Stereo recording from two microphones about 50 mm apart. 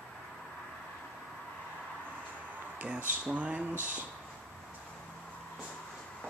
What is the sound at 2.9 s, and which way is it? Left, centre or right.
Speech, right.